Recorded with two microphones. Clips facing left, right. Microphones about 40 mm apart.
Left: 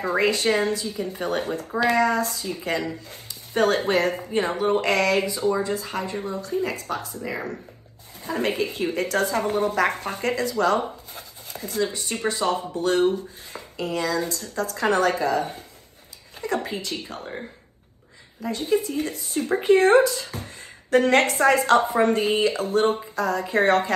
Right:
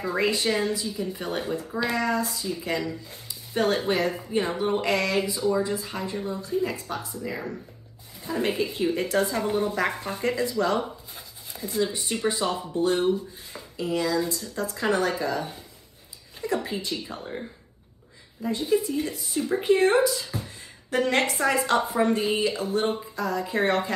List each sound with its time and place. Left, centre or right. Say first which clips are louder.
0.0 s a woman's voice: left 3 dB; left
6.1 s speech: left 2 dB; left
6.4 s a woman's voice: even; left
8.5 s a woman's voice: even; left
11.1 s writing: left 2 dB; left
12.0 s a woman's voice: left 1 dB; left
18.4 s a woman's voice: even; left
18.9 s a woman's voice: left 1 dB; left